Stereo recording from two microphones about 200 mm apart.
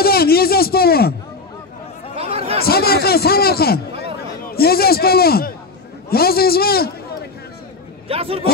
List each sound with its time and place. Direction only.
0.0 s a sound: 50° left (ahead or behind)
2.1 s chatter: 30° right (ahead or behind)
2.6 s a man's voice: 50° left (ahead or behind)
4.0 s a sound: 50° left (ahead or behind)
6.0 s a man's voice: 50° left (ahead or behind)
8.1 s speech: 30° right (ahead or behind)